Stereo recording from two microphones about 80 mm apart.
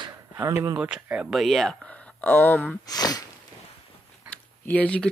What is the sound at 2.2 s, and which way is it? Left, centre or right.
Speech, left.